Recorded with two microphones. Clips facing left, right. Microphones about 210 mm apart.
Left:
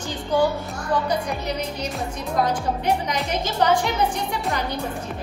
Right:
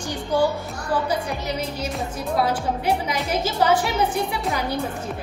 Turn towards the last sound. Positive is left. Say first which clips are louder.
# right 1 dB
turn(degrees=-10)  # may be behind; listen again after turning